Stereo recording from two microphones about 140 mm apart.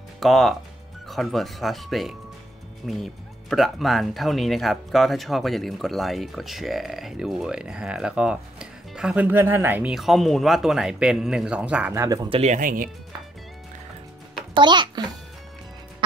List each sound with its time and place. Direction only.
0.2 s speech: centre (ahead or behind)
9.9 s speech: centre (ahead or behind)
11.9 s speech: 25° right (ahead or behind)
12.3 s speech: 45° right (ahead or behind)
12.5 s speech: 85° right
14.5 s a child's voice: 35° right (ahead or behind)